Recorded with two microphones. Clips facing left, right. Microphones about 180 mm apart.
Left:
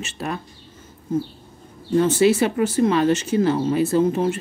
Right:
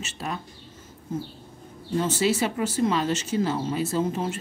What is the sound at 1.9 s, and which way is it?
Speech, 60° left (ahead or behind).